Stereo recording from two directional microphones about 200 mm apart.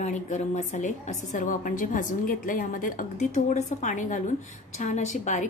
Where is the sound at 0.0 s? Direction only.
35° left (ahead or behind).